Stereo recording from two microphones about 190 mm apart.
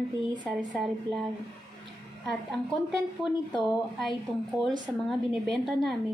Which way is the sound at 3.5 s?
Centre (ahead or behind).